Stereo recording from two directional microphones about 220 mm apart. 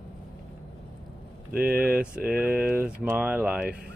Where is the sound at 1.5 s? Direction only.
45° right (ahead or behind).